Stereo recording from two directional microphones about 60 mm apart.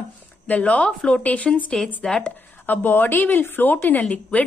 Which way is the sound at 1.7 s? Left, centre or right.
Centre.